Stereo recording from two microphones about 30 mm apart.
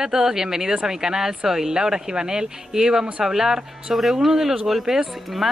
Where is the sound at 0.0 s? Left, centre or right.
Centre.